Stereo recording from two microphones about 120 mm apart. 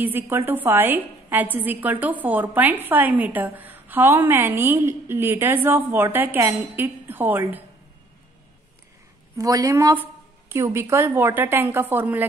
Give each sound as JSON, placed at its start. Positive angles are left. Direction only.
{"t": 0.0, "sound": "a woman's voice", "side_deg": -15}
{"t": 9.4, "sound": "a woman's voice", "side_deg": -30}